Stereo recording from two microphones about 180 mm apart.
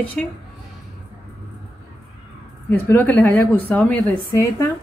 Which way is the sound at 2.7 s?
10° left (ahead or behind).